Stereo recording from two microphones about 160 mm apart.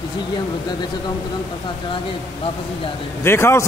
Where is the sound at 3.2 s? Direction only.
15° left (ahead or behind).